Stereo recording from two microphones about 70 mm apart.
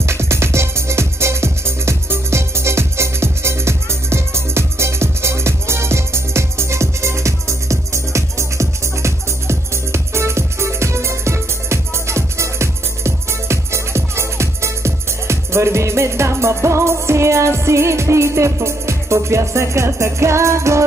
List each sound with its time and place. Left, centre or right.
0.0 s music: right